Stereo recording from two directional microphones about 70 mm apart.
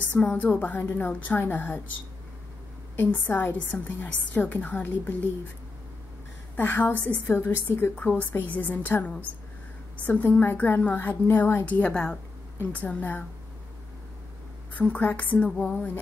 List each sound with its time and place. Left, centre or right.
0.1 s a woman's voice: left
3.0 s a woman's voice: left
6.5 s a woman's voice: left
7.9 s a woman's voice: left
11.9 s speech: centre
12.5 s a woman's voice: left
14.7 s a woman's voice: left